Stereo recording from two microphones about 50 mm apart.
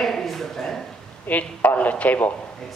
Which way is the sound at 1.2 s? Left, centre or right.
Left.